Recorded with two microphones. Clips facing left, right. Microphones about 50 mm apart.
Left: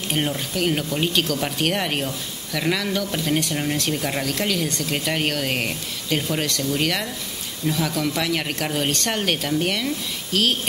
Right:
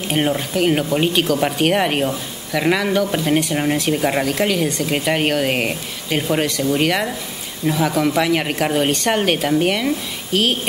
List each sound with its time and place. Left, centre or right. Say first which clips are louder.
0.1 s speech: right 6 dB; centre